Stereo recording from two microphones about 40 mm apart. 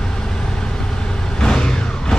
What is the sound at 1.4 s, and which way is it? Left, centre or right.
Vehicle, centre.